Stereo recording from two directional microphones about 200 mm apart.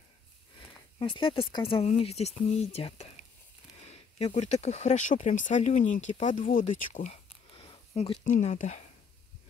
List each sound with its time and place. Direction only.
0.6 s speech: 25° left (ahead or behind)